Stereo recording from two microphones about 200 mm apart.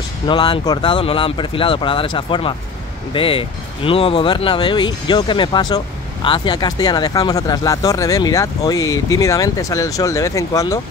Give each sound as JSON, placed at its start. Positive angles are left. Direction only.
{"t": 0.3, "sound": "speech", "side_deg": 20}